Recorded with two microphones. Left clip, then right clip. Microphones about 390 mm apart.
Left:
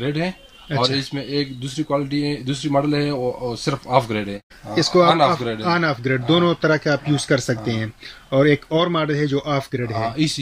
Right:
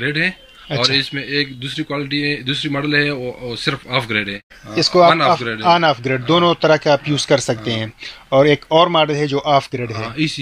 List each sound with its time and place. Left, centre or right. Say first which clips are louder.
0.0 s speech: right 6 dB; centre
0.7 s a man's voice: right 3 dB; centre
0.9 s speech: right 5 dB; centre
4.7 s a man's voice: right 3 dB; centre
10.1 s speech: right 2 dB; left